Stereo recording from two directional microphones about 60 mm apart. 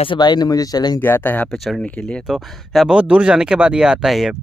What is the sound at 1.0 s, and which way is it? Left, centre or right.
Speech, left.